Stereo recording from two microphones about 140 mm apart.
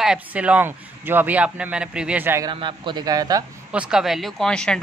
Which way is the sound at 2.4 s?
35° right (ahead or behind).